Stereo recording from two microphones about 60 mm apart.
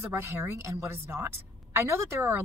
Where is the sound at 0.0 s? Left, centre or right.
Right.